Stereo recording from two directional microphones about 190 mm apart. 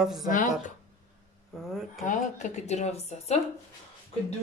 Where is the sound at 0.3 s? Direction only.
40° left (ahead or behind).